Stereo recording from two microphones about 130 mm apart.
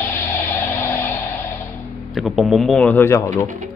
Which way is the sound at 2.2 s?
Centre (ahead or behind).